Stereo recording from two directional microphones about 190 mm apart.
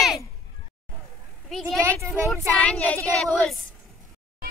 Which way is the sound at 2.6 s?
5° left (ahead or behind).